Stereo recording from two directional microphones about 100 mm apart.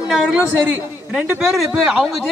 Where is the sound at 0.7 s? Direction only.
20° right (ahead or behind).